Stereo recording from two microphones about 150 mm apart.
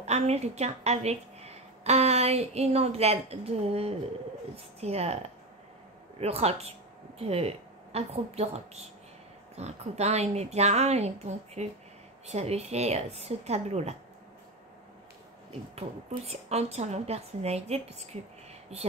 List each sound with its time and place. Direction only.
0.0 s speech: 45° right (ahead or behind)
15.7 s speech: 45° right (ahead or behind)